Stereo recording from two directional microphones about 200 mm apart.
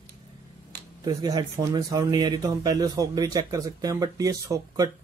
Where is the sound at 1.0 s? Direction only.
20° right (ahead or behind).